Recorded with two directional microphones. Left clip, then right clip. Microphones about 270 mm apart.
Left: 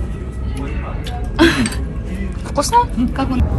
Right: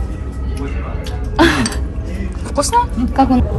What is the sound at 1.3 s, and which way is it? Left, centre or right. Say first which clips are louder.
Throat clearing: right 1 dB; right.